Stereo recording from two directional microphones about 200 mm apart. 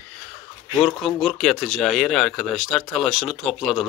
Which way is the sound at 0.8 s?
Centre (ahead or behind).